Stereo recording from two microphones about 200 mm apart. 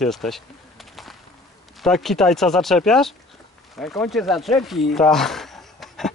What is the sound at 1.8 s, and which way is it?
Speech, centre (ahead or behind).